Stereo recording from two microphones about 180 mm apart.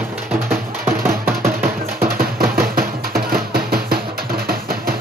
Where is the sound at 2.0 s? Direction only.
55° right (ahead or behind).